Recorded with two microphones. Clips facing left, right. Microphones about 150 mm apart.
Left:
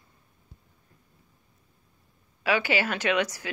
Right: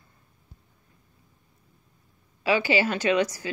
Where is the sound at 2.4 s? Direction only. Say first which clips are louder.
Right 3 dB; 60° left (ahead or behind).